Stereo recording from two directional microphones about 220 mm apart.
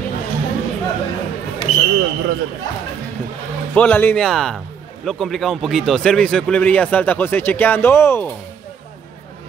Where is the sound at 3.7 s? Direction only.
5° left (ahead or behind).